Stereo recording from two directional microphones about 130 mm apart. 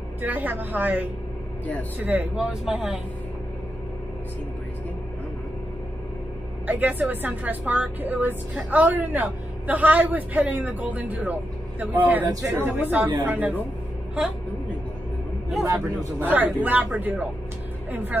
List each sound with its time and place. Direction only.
0.2 s a woman's voice: 15° right (ahead or behind)
6.7 s a woman's voice: 15° right (ahead or behind)
12.3 s speech: 25° right (ahead or behind)
12.6 s a woman's voice: 15° right (ahead or behind)
15.6 s a woman's voice: 25° right (ahead or behind)